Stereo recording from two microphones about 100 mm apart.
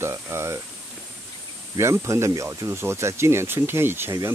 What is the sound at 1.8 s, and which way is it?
Speech, 30° right (ahead or behind).